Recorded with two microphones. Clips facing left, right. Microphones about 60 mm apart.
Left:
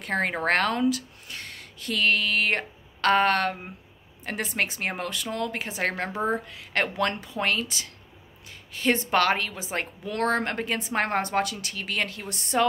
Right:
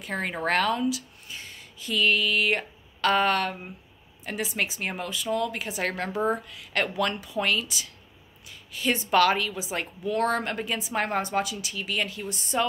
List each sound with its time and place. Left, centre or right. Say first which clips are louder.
0.0 s a woman's voice: left 3 dB; left
1.2 s a woman's voice: left 2 dB; left
5.6 s a woman's voice: left 1 dB; left